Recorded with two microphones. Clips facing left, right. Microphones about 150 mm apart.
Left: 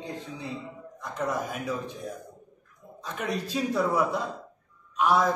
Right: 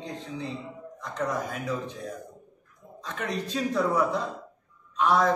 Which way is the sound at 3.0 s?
10° left (ahead or behind).